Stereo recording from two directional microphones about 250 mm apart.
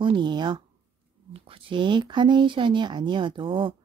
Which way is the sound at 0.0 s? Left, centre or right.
Centre.